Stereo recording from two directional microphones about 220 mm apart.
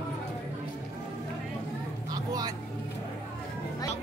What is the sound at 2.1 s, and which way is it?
Vehicle, 15° right (ahead or behind).